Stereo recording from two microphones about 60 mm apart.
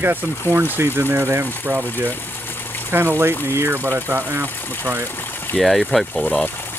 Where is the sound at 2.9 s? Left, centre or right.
Right.